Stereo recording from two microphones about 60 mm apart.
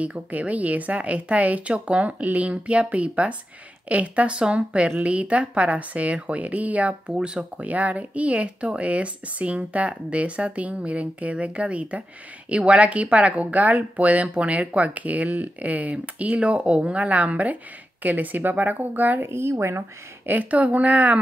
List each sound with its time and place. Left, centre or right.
0.0 s speech: right
19.2 s speech: right
20.2 s speech: right